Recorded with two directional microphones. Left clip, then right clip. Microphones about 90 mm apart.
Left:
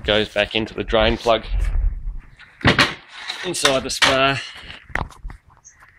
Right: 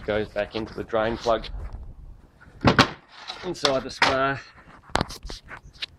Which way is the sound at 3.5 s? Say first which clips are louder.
Left 5 dB; 5° left (ahead or behind).